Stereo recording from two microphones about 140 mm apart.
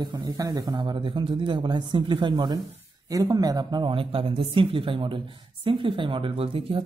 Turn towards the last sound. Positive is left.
turn(degrees=-40)  # may be behind; listen again after turning